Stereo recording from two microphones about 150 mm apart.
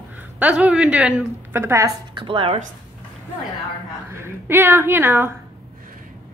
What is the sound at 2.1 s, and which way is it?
Speech, 35° right (ahead or behind).